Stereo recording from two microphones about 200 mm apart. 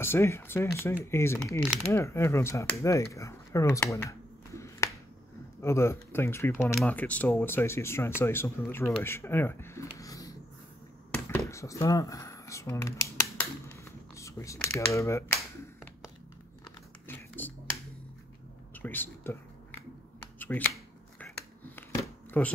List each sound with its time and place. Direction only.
0.0 s speech: 10° left (ahead or behind)
4.6 s finger snapping: 15° left (ahead or behind)
5.6 s speech: 15° left (ahead or behind)
11.2 s computer keyboard: 15° left (ahead or behind)
16.6 s typing: 10° left (ahead or behind)
18.8 s speech: 10° left (ahead or behind)
20.3 s speech: 10° left (ahead or behind)
22.3 s speech: 5° left (ahead or behind)